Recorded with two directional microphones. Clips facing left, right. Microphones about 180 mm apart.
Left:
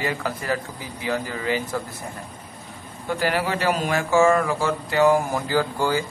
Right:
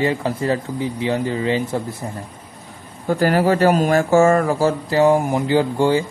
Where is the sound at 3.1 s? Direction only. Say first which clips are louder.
Right 7 dB; 40° right (ahead or behind); by 6.1 s 25° right (ahead or behind).